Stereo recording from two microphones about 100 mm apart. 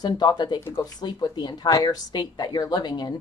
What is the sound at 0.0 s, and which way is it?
A woman's voice, 45° left (ahead or behind).